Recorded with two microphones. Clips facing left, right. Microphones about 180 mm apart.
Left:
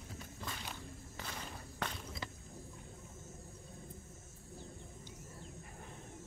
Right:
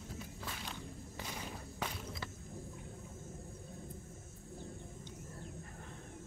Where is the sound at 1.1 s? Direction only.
10° right (ahead or behind).